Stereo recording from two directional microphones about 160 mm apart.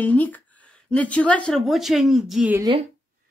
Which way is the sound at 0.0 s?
10° left (ahead or behind).